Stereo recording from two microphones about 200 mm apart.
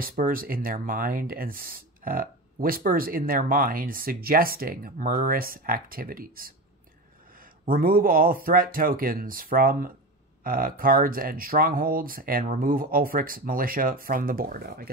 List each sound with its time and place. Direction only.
0.0 s speech: 45° right (ahead or behind)